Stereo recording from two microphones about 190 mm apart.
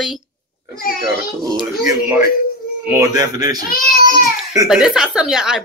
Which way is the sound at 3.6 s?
50° left (ahead or behind).